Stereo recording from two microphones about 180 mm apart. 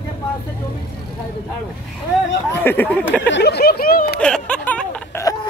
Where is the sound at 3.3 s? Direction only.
65° left (ahead or behind).